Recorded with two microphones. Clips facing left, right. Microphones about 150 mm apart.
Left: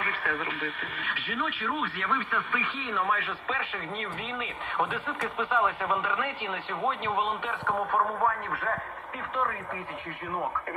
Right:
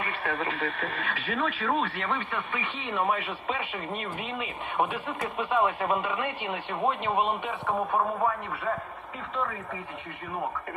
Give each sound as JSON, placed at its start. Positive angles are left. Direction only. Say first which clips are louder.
{"t": 0.0, "sound": "speech", "louder": "right 2 dB", "side_deg": -25}